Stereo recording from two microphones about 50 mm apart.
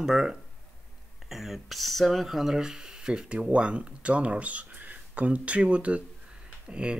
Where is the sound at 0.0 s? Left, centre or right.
Centre.